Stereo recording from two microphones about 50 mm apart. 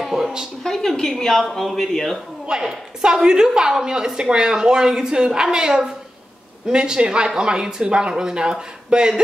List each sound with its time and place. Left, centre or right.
0.0 s a sound: centre
0.7 s speech: centre
2.6 s a woman's voice: centre